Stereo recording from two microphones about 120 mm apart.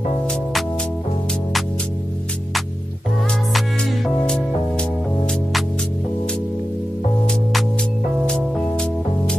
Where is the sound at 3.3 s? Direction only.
5° left (ahead or behind).